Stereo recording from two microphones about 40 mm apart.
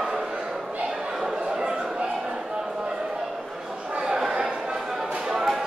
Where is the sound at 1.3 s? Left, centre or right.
Right.